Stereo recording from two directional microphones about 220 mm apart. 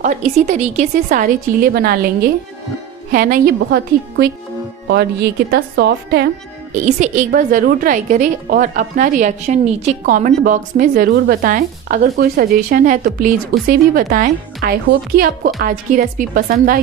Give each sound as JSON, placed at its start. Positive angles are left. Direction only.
{"t": 0.0, "sound": "a woman's voice", "side_deg": -35}
{"t": 6.8, "sound": "a woman's voice", "side_deg": -35}